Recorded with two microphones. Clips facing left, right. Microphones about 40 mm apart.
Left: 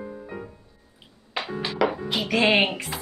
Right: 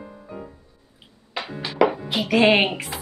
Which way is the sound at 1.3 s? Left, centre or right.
Centre.